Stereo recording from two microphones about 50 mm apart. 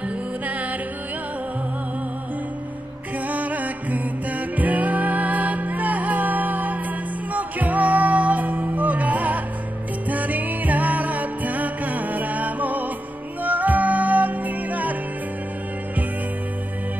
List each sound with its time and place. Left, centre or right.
0.5 s music: right
3.3 s music: right